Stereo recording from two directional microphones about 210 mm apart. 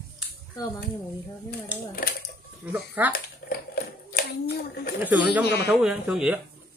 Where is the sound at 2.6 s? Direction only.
10° right (ahead or behind).